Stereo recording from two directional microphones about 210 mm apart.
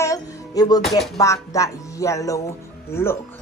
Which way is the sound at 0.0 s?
15° left (ahead or behind).